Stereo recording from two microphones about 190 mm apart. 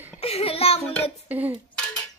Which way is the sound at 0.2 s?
30° left (ahead or behind).